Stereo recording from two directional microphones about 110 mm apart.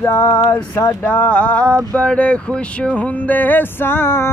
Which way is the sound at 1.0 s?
10° left (ahead or behind).